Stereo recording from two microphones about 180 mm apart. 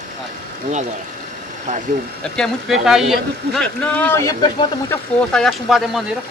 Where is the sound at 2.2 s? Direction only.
Centre (ahead or behind); by 5.0 s 15° left (ahead or behind).